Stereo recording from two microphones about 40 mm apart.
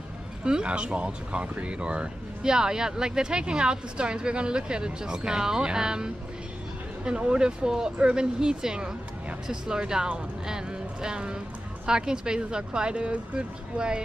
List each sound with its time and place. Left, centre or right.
0.5 s speech: right